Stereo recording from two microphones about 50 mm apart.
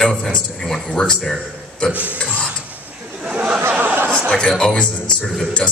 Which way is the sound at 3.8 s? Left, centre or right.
Right.